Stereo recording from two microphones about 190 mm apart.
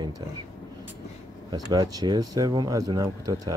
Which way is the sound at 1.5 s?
20° right (ahead or behind).